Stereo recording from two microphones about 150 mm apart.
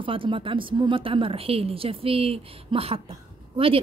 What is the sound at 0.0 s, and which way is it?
A woman's voice, 35° right (ahead or behind).